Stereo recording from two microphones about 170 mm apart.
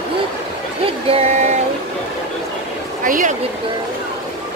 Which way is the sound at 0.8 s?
40° right (ahead or behind).